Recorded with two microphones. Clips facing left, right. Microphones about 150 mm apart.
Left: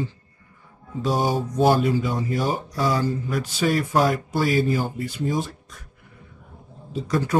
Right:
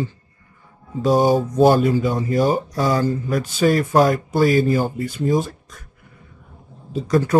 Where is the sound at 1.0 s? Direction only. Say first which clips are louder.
Right 7 dB; 45° right (ahead or behind).